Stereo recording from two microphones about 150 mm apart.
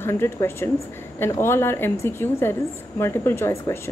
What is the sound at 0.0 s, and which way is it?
A woman's voice, 15° left (ahead or behind).